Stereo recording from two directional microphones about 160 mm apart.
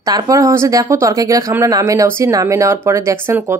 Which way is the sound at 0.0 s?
20° right (ahead or behind).